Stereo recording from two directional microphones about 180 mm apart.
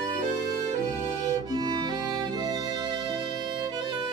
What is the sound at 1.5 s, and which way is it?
Music, 20° right (ahead or behind).